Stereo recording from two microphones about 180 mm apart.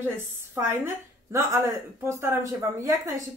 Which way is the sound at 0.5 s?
15° right (ahead or behind).